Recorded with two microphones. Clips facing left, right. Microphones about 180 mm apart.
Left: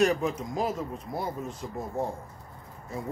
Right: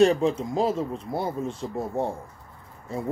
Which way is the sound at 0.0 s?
30° right (ahead or behind).